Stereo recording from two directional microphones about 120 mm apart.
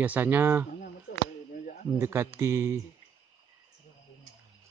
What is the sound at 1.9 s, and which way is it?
Speech, 20° right (ahead or behind).